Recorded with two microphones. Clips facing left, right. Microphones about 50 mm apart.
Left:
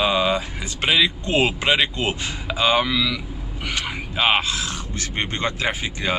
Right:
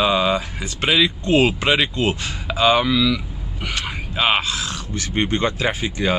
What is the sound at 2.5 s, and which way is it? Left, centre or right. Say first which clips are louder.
Speech: right 3 dB; centre.